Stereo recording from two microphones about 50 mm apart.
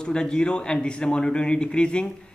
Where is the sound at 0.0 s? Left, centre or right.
Centre.